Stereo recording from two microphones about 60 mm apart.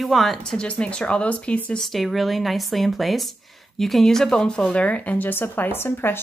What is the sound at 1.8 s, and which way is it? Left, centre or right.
Speech, centre.